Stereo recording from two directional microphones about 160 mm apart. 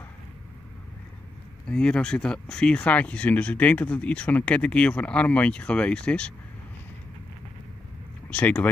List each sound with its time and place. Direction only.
1.7 s speech: 5° left (ahead or behind)
8.3 s speech: 10° left (ahead or behind)